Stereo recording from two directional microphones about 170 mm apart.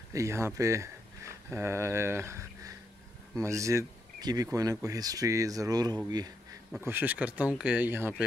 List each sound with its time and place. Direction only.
0.1 s speech: 15° right (ahead or behind)
6.8 s speech: 10° right (ahead or behind)